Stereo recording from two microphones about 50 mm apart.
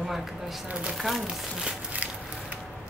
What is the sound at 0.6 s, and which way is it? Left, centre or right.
Speech, right.